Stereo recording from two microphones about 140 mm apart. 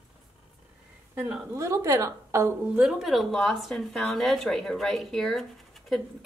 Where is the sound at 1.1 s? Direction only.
10° right (ahead or behind).